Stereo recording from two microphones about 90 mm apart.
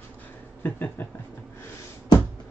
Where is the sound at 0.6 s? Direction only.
20° left (ahead or behind).